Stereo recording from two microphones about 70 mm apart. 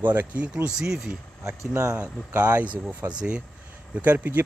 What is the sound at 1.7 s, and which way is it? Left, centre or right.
Speech, right.